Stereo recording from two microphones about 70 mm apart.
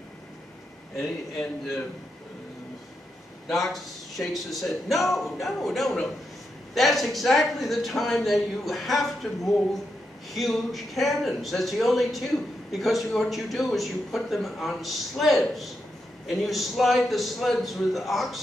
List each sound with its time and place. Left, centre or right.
0.9 s speech: centre
3.4 s speech: centre